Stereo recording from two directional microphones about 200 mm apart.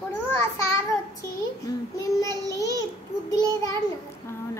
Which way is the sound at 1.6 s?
15° left (ahead or behind).